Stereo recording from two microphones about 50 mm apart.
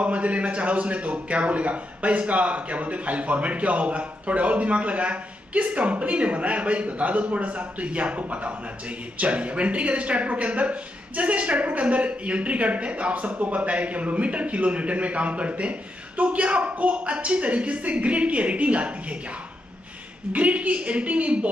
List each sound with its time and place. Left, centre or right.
0.0 s a man's voice: right
20.3 s a man's voice: right